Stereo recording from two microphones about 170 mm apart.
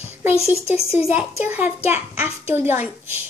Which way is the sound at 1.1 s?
10° right (ahead or behind).